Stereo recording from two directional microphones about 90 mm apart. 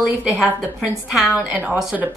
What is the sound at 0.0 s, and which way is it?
Speech, 15° right (ahead or behind).